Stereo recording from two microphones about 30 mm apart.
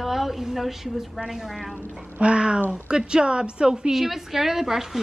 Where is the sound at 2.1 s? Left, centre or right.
Right.